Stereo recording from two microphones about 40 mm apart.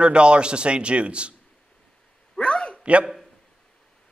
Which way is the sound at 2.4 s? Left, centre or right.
Left.